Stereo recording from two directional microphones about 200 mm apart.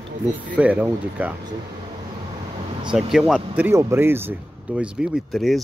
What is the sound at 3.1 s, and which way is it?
Speech, centre (ahead or behind).